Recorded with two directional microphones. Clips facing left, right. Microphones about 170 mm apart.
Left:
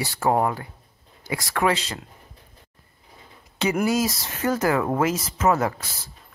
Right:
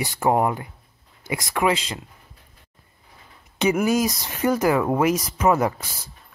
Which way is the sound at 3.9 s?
15° right (ahead or behind).